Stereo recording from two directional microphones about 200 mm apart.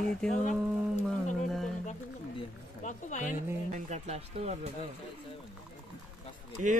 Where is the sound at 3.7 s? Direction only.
35° right (ahead or behind).